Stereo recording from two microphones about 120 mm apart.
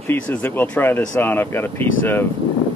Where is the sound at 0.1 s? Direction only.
15° left (ahead or behind).